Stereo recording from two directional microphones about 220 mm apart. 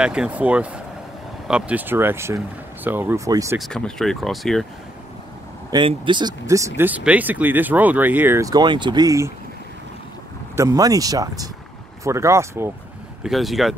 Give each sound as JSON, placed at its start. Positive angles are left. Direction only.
{"t": 0.0, "sound": "speech", "side_deg": -5}
{"t": 3.5, "sound": "speech", "side_deg": 0}
{"t": 5.7, "sound": "speech", "side_deg": -20}
{"t": 10.5, "sound": "speech", "side_deg": -15}
{"t": 13.2, "sound": "speech", "side_deg": 0}